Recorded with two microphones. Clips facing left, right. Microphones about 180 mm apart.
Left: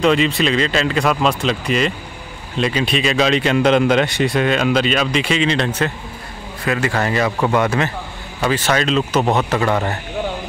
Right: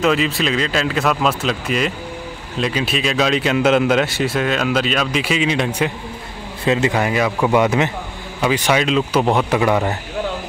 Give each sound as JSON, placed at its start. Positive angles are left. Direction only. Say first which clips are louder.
{"t": 0.0, "sound": "speech", "louder": "left 2 dB", "side_deg": 0}
{"t": 6.6, "sound": "speech", "louder": "right 3 dB", "side_deg": -25}
{"t": 6.9, "sound": "speech", "louder": "even", "side_deg": -10}
{"t": 7.5, "sound": "speech", "louder": "right 2 dB", "side_deg": -15}